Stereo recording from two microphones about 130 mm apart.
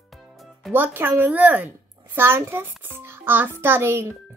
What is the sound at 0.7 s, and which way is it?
A child's voice, 15° right (ahead or behind).